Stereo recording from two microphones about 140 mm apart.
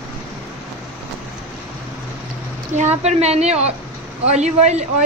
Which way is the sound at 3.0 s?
50° right (ahead or behind).